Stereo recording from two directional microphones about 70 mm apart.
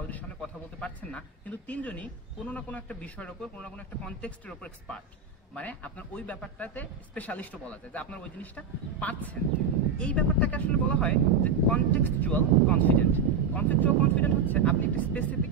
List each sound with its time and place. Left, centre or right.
0.4 s speech: centre